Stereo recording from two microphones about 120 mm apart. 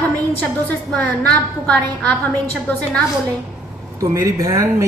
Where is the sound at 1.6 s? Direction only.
10° left (ahead or behind).